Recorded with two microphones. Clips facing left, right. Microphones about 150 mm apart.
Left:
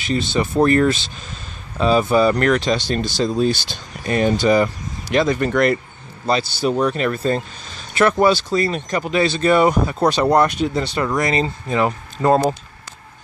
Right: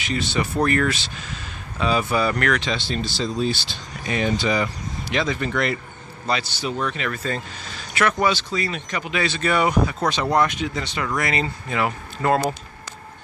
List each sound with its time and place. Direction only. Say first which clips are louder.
0.0 s speech: left 4 dB; 30° left (ahead or behind); by 5.8 s 45° left (ahead or behind)
6.2 s speech: left 6 dB; 35° left (ahead or behind)